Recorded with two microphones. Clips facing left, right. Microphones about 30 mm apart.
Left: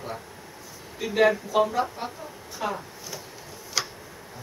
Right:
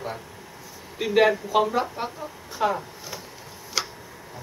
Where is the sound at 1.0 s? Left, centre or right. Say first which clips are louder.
Right 2 dB; right.